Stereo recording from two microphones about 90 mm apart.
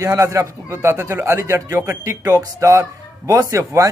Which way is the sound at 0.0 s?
35° right (ahead or behind).